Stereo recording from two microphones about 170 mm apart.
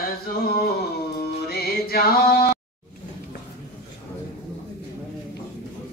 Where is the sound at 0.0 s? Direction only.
65° left (ahead or behind).